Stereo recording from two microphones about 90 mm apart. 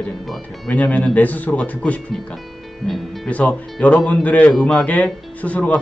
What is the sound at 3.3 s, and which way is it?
Speech, 15° left (ahead or behind).